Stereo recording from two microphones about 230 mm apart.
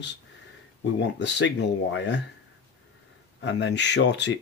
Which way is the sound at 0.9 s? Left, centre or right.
Left.